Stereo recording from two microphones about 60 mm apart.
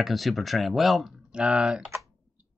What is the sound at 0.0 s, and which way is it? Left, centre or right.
Speech, centre.